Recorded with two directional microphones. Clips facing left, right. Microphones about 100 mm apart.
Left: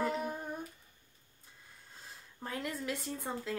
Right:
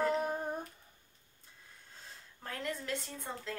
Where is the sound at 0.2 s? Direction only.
40° right (ahead or behind).